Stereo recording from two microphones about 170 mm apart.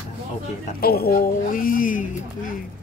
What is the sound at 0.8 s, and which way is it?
Speech, 65° left (ahead or behind).